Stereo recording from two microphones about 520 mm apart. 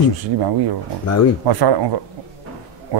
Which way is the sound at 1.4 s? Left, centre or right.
Right.